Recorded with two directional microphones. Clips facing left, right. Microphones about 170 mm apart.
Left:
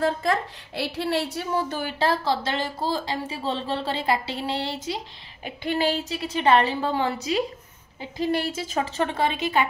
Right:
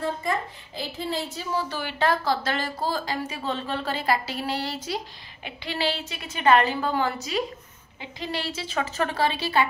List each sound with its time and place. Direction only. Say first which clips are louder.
0.0 s a woman's voice: left 4 dB; 90° left; by 4.7 s 25° left (ahead or behind)
5.4 s a woman's voice: left 4 dB; 50° left (ahead or behind); by 7.4 s 30° left (ahead or behind)
8.0 s a woman's voice: left 7 dB; 50° left (ahead or behind)
8.7 s a woman's voice: left 1 dB; 25° left (ahead or behind)